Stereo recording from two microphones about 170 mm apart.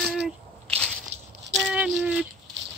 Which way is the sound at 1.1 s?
40° right (ahead or behind).